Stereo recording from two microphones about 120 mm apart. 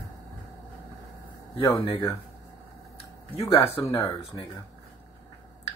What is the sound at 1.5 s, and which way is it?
Speech, 50° left (ahead or behind).